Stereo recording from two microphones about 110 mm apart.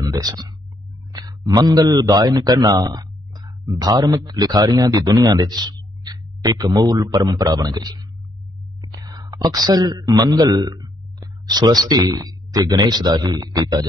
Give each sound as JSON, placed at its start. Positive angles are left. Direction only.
{"t": 0.0, "sound": "a man's voice", "side_deg": -35}